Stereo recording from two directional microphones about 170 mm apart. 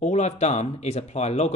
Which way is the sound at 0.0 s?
40° left (ahead or behind).